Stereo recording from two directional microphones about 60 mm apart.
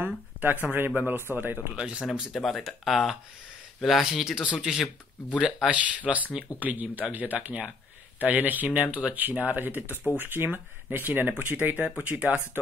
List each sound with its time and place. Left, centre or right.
0.0 s speech: right
1.8 s speech: centre
2.3 s speech: centre
5.7 s speech: right